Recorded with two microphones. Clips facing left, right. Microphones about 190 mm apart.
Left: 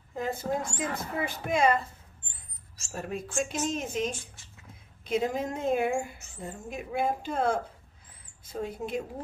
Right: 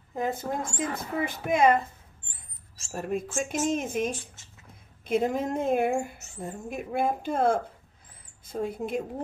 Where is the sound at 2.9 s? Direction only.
50° right (ahead or behind).